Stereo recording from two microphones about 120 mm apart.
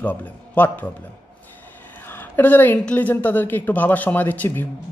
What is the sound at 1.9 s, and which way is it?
A woman's voice, 15° left (ahead or behind).